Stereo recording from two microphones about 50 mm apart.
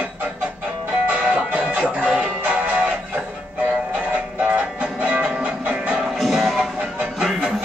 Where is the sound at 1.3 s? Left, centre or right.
Right.